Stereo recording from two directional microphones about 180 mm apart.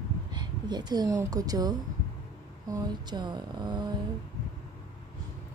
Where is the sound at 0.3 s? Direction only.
25° right (ahead or behind).